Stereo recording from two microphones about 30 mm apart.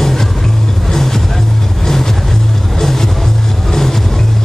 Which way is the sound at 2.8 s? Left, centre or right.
Centre.